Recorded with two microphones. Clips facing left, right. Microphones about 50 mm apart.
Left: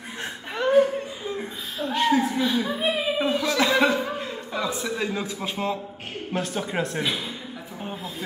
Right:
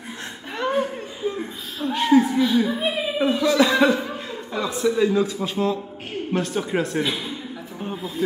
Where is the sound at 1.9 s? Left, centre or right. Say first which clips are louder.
Right 4 dB; centre.